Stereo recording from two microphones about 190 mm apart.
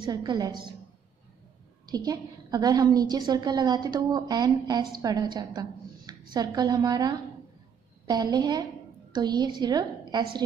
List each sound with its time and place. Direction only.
0.0 s a woman's voice: 20° right (ahead or behind)
1.9 s a woman's voice: 20° right (ahead or behind)